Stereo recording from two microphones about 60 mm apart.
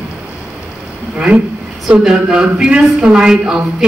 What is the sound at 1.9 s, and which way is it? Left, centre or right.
Speech, centre.